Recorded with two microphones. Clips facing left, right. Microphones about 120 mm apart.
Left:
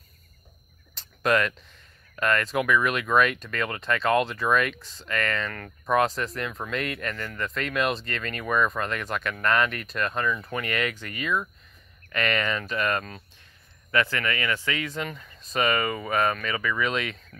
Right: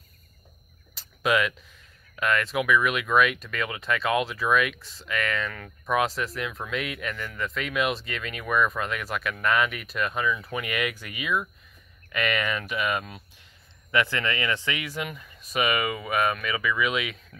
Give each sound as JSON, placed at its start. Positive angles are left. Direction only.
{"t": 0.9, "sound": "speech", "side_deg": -5}